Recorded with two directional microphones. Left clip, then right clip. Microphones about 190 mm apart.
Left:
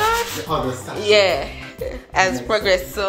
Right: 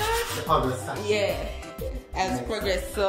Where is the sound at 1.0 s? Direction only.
5° left (ahead or behind).